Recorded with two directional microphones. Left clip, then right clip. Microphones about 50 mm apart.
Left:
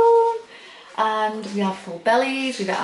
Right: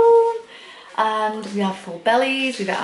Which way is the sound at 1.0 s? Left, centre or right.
Centre.